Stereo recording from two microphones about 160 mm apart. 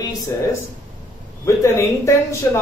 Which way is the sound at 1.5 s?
15° left (ahead or behind).